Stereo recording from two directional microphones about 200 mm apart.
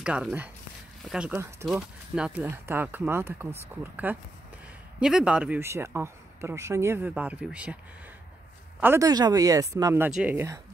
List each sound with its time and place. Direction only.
0.0 s speech: 5° right (ahead or behind)